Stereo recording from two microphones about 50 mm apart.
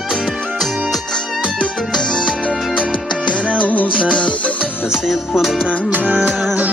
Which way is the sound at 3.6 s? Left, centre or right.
Left.